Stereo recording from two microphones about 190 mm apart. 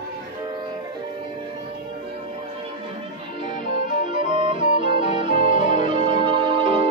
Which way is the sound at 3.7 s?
25° right (ahead or behind).